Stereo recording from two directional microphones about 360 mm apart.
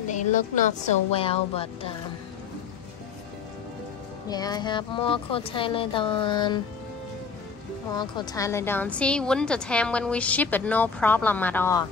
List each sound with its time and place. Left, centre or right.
0.1 s speech: left
4.3 s speech: centre
8.0 s a woman's voice: centre